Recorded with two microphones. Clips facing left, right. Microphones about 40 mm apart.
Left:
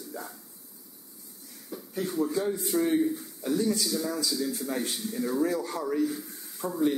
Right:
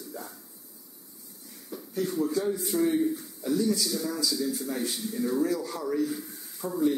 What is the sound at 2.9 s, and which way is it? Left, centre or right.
Speech, centre.